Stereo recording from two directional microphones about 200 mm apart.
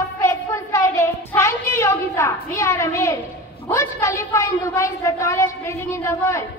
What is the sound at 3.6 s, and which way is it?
A woman's voice, 15° left (ahead or behind).